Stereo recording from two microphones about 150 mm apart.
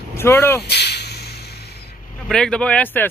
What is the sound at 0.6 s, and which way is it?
Whip, 90° left.